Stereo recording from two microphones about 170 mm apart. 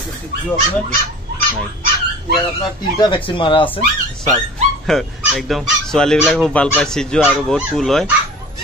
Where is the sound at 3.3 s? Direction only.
30° left (ahead or behind).